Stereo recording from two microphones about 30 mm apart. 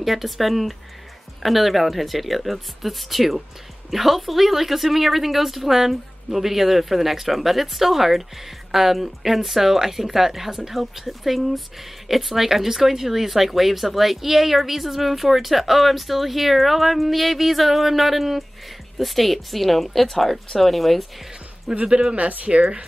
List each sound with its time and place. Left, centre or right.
0.0 s a woman's voice: centre
21.7 s a woman's voice: centre
22.1 s speech: right